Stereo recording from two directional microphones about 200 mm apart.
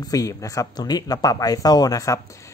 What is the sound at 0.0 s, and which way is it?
Speech, 15° left (ahead or behind).